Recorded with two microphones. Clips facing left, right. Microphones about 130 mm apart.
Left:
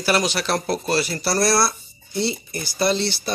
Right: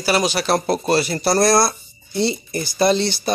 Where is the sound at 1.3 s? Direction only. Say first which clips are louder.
Right 4 dB; 45° right (ahead or behind).